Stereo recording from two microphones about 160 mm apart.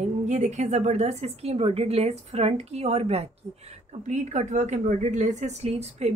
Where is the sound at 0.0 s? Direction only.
45° right (ahead or behind).